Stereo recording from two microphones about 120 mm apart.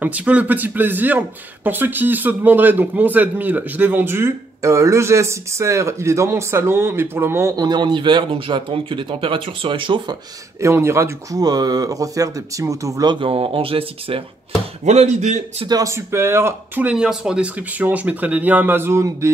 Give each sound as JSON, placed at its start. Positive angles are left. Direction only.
{"t": 0.0, "sound": "speech", "side_deg": -10}
{"t": 10.6, "sound": "speech", "side_deg": -25}
{"t": 13.1, "sound": "speech", "side_deg": -45}
{"t": 14.9, "sound": "speech", "side_deg": -70}
{"t": 15.8, "sound": "speech", "side_deg": -20}